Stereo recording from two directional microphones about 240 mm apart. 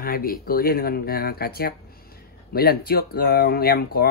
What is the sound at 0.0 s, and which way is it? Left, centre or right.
Speech, left.